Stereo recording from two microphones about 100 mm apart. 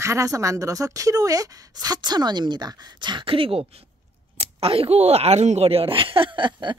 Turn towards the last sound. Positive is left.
turn(degrees=-50)  # may be behind; listen again after turning